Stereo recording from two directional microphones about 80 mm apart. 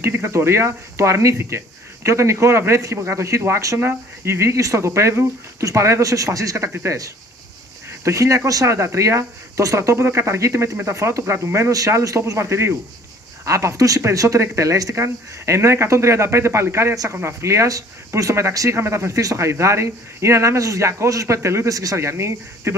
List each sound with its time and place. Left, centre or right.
0.0 s speech: right
8.0 s speech: right